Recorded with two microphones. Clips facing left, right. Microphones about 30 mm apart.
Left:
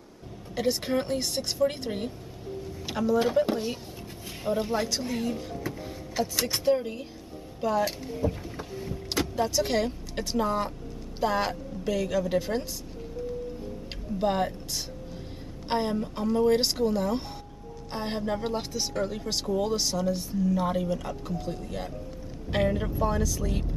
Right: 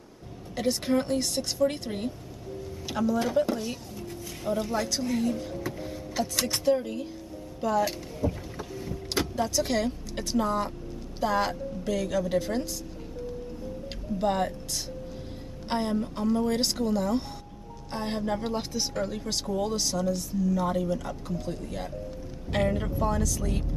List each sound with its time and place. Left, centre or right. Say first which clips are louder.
0.6 s a woman's voice: right 1 dB; centre
6.4 s speech: even; centre
7.6 s rowboat: even; centre
9.3 s a woman's voice: left 2 dB; centre
14.1 s speech: even; centre
15.7 s speech: left 1 dB; centre
20.1 s a woman's voice: even; left; by 23.6 s centre